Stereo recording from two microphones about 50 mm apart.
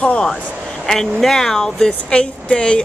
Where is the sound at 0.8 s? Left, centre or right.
Centre.